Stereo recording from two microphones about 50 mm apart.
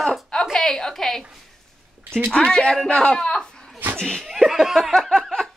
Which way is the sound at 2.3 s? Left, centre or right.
Centre.